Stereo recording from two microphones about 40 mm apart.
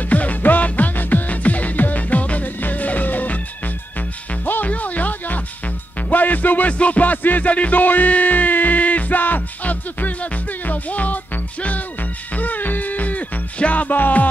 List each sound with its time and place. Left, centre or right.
0.1 s music: left
4.6 s music: left
12.4 s music: left